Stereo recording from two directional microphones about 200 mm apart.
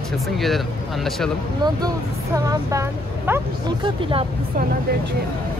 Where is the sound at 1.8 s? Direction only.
15° right (ahead or behind).